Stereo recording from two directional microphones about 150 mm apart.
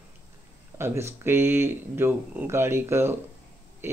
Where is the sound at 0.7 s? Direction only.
15° right (ahead or behind).